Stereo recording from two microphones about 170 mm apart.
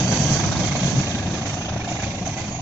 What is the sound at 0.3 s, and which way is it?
Vehicle, 10° left (ahead or behind).